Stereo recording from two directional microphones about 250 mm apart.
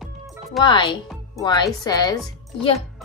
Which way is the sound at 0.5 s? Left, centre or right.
Centre.